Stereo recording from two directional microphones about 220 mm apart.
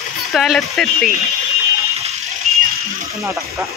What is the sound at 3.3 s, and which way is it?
Speech, 15° right (ahead or behind).